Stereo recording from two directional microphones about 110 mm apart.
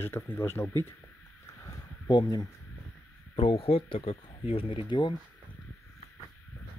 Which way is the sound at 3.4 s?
60° left (ahead or behind).